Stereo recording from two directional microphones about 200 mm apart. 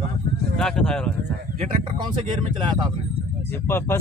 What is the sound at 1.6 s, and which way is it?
Speech, 25° right (ahead or behind).